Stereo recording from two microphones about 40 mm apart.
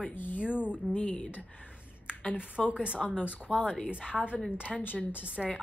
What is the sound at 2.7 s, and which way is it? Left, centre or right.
Speech, right.